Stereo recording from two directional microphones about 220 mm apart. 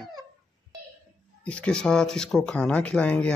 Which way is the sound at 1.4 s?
5° left (ahead or behind).